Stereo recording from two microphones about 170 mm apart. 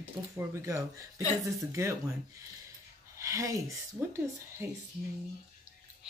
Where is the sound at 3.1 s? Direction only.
20° right (ahead or behind).